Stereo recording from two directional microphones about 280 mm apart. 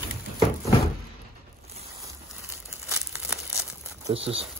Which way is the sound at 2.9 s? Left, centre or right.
Centre.